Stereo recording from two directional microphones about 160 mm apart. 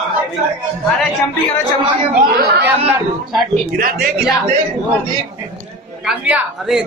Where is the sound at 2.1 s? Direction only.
70° right (ahead or behind).